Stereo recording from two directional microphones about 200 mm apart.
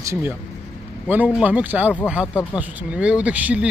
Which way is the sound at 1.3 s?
5° right (ahead or behind).